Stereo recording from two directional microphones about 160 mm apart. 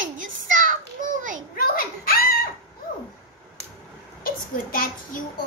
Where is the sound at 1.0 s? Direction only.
55° right (ahead or behind).